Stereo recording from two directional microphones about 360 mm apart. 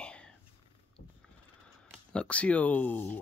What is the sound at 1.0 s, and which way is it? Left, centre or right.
Horse, left.